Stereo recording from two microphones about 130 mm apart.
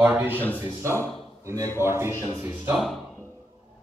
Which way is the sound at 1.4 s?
25° right (ahead or behind).